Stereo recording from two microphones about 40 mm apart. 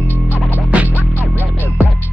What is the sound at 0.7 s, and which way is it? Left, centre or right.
Music, right.